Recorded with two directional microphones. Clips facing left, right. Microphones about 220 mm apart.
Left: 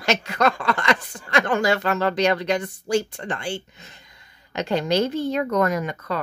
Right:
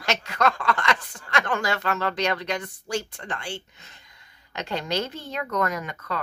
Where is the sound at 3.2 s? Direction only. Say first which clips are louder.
Left 6 dB; 35° left (ahead or behind).